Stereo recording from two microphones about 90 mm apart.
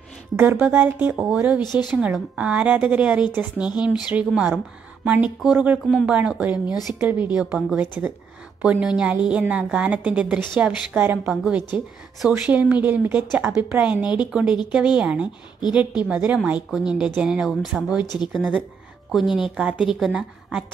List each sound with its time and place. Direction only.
0.4 s speech: 20° right (ahead or behind)
1.2 s speech: 5° right (ahead or behind)
1.6 s speech: 50° left (ahead or behind)
1.9 s a woman's voice: 5° right (ahead or behind)
18.0 s speech: 50° left (ahead or behind)
19.1 s a woman's voice: 5° right (ahead or behind)